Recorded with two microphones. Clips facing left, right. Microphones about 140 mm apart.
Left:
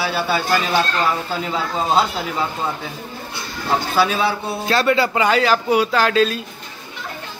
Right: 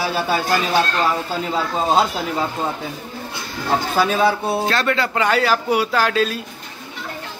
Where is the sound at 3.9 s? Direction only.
45° right (ahead or behind).